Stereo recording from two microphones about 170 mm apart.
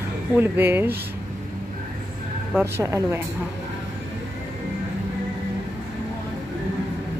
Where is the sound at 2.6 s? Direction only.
15° right (ahead or behind).